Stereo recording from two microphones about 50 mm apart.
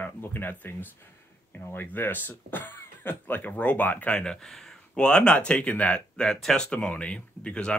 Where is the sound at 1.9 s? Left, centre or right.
Left.